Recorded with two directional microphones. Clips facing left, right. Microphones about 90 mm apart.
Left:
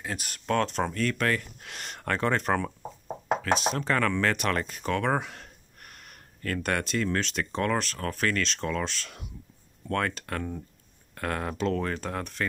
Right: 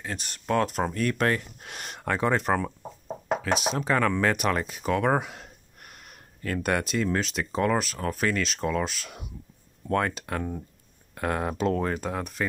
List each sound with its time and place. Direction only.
0.0 s speech: 5° left (ahead or behind)
0.5 s speech: 10° right (ahead or behind); by 1.9 s 25° right (ahead or behind)
1.9 s speech: 10° right (ahead or behind)
3.7 s speech: 10° right (ahead or behind)
12.0 s speech: 5° right (ahead or behind)